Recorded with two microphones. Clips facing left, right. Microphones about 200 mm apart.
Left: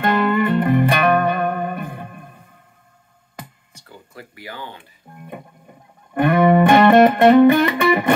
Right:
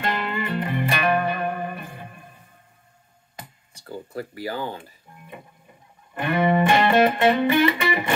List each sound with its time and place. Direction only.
0.0 s music: 55° left (ahead or behind)
3.8 s speech: 30° right (ahead or behind)
5.1 s music: 50° left (ahead or behind)